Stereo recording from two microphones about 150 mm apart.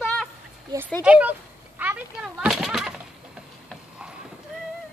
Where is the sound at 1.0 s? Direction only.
10° right (ahead or behind).